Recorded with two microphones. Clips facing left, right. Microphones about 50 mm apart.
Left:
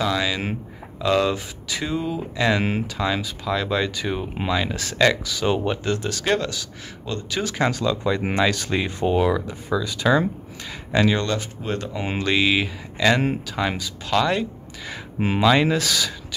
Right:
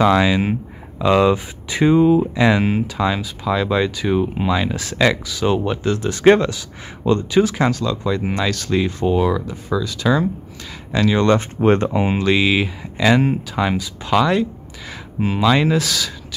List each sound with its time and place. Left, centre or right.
0.0 s speech: right; by 6.0 s centre
6.0 s speech: right
7.2 s speech: centre
8.2 s speech: centre
8.5 s speech: centre
11.2 s speech: right
12.0 s speech: centre
15.1 s speech: centre
15.4 s speech: centre